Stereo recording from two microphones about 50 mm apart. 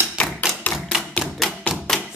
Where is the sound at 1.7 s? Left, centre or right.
Left.